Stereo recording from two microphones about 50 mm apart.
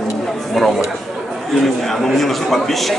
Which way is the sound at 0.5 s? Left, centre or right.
Centre.